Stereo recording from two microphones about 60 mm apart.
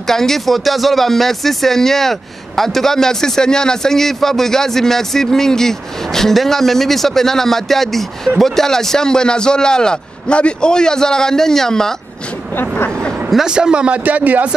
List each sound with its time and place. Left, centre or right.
0.0 s a man's voice: centre
12.5 s a sound: left
13.3 s a man's voice: centre; by 14.5 s right